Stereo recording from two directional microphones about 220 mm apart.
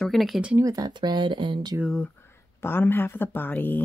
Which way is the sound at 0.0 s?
Centre (ahead or behind).